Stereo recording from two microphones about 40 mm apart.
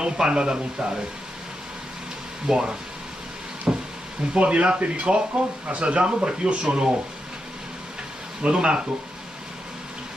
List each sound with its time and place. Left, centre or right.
0.0 s speech: right
2.4 s speech: centre
3.7 s a sound: centre
4.3 s speech: right
8.4 s speech: right